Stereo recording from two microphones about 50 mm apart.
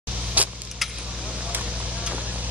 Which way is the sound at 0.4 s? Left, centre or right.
Right.